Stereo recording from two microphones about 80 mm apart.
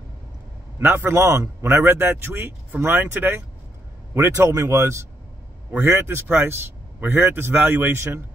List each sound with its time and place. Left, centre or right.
0.7 s a man's voice: right